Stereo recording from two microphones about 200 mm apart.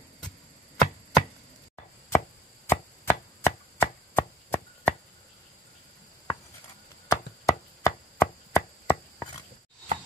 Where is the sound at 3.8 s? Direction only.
10° left (ahead or behind).